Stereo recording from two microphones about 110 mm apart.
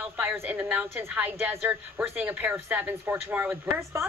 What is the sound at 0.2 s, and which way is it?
A woman's voice, 15° right (ahead or behind).